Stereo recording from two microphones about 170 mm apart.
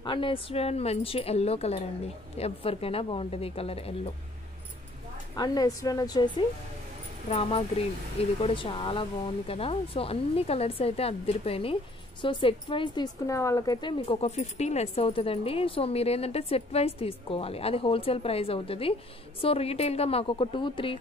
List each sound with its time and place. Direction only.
0.0 s speech: 30° left (ahead or behind)
5.3 s a woman's voice: 25° left (ahead or behind)
7.2 s speech: 35° left (ahead or behind)